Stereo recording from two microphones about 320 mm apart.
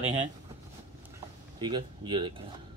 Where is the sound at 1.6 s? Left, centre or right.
Centre.